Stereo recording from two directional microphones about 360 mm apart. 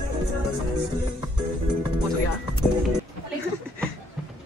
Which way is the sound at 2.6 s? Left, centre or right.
Centre.